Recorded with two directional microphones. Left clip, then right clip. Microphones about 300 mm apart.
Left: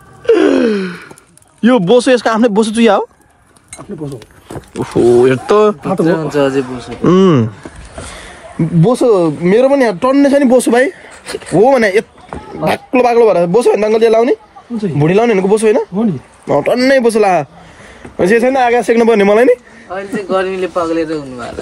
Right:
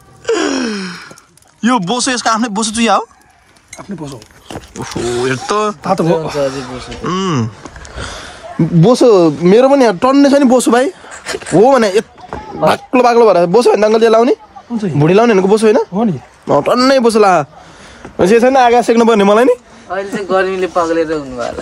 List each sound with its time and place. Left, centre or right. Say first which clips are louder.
0.2 s gasp: left 6 dB; centre
1.6 s speech: left 5 dB; centre
4.8 s speech: left 8 dB; centre
5.9 s a man's voice: even; right
7.0 s speech: left 8 dB; centre
8.8 s speech: right 3 dB; centre
11.2 s speech: right 1 dB; right
11.6 s speech: even; centre
19.9 s a man's voice: right 1 dB; right